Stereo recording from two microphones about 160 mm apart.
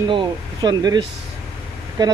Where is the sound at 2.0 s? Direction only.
25° right (ahead or behind).